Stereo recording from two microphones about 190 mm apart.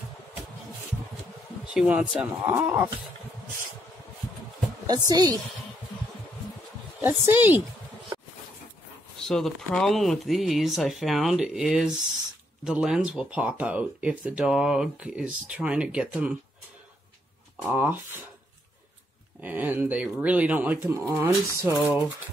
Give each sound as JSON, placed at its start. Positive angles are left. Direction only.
{"t": 1.7, "sound": "speech", "side_deg": -5}
{"t": 4.8, "sound": "a woman's voice", "side_deg": -20}
{"t": 7.0, "sound": "speech", "side_deg": -10}
{"t": 9.3, "sound": "speech", "side_deg": 5}
{"t": 17.6, "sound": "speech", "side_deg": -10}
{"t": 19.4, "sound": "speech", "side_deg": -10}